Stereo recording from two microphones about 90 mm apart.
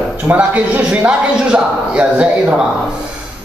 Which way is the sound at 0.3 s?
15° right (ahead or behind).